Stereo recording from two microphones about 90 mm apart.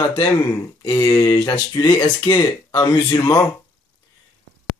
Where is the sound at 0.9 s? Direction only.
40° left (ahead or behind).